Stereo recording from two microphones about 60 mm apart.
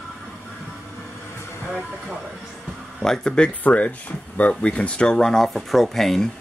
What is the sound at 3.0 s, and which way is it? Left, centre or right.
Speech, centre.